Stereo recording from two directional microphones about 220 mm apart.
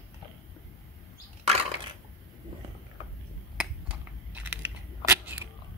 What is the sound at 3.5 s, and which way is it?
Crushing, 5° right (ahead or behind).